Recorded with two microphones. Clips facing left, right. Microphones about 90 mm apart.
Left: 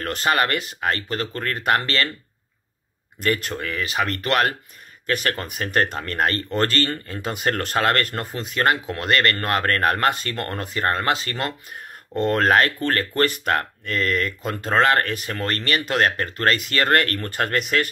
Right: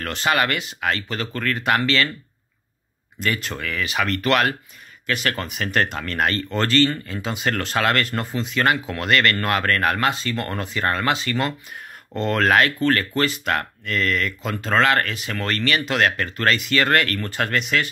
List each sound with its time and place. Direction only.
0.0 s speech: 40° left (ahead or behind)
3.2 s speech: 45° left (ahead or behind)
3.5 s speech: 35° left (ahead or behind)